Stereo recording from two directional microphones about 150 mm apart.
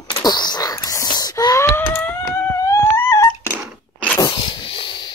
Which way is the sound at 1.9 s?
15° left (ahead or behind).